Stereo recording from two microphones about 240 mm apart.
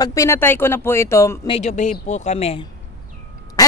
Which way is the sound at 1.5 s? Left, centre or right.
Left.